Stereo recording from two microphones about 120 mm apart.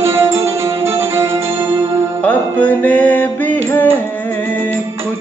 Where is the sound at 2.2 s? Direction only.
10° left (ahead or behind).